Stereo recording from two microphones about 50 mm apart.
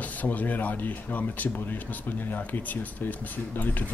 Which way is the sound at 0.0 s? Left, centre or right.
Left.